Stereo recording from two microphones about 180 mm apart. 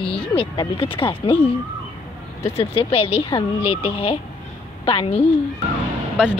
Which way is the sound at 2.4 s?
35° left (ahead or behind).